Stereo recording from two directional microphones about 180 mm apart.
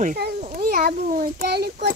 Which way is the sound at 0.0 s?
45° right (ahead or behind).